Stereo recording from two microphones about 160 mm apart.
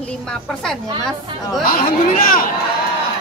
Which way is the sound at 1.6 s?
60° left (ahead or behind).